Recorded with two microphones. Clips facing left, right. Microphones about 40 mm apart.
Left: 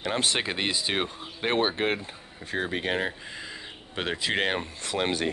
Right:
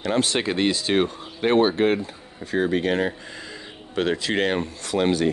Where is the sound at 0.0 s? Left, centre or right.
Centre.